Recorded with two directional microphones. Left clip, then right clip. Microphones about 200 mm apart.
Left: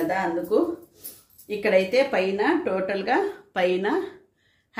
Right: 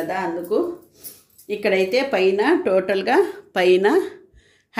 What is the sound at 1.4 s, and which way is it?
A woman's voice, 40° right (ahead or behind).